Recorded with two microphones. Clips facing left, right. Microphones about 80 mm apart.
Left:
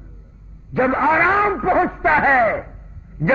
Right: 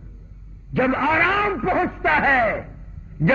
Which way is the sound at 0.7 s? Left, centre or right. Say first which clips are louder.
Left 3 dB; left.